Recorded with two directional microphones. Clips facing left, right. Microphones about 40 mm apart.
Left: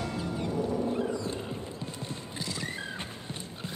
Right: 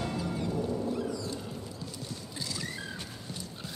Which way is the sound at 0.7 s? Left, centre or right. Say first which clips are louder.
Left 3 dB; left.